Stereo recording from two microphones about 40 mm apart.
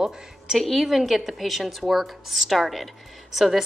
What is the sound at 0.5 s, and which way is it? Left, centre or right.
Speech, centre.